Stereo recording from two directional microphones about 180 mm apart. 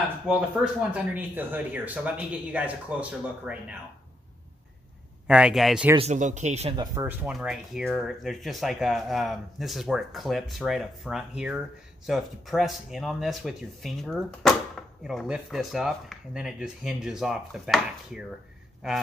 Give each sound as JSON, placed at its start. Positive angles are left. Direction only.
{"t": 0.3, "sound": "speech", "side_deg": -5}
{"t": 5.2, "sound": "speech", "side_deg": -5}
{"t": 5.9, "sound": "speech", "side_deg": -40}
{"t": 6.8, "sound": "speech", "side_deg": -15}